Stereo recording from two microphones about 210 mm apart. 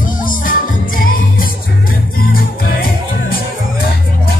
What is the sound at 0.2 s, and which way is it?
Music, 40° left (ahead or behind).